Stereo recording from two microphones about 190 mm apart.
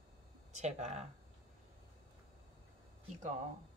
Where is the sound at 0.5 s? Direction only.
35° right (ahead or behind).